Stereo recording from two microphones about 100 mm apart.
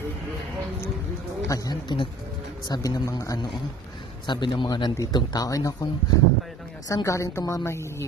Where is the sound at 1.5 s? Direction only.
35° left (ahead or behind).